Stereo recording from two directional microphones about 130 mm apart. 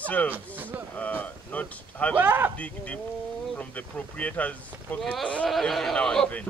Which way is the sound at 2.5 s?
10° left (ahead or behind).